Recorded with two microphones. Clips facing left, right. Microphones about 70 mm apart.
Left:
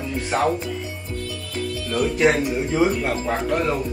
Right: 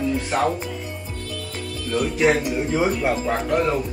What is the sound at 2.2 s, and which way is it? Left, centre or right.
Speech, centre.